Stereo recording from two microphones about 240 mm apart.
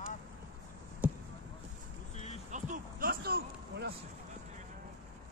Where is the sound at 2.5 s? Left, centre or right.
Right.